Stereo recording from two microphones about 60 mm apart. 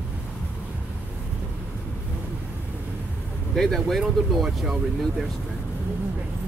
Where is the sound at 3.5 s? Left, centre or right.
Centre.